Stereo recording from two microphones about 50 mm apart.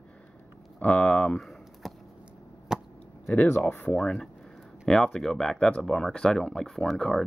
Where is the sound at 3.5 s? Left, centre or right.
Left.